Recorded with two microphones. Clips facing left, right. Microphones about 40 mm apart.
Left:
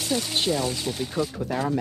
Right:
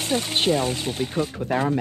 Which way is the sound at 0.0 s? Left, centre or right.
Right.